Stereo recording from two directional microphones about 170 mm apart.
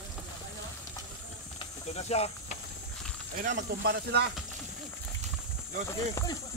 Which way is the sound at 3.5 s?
65° right (ahead or behind).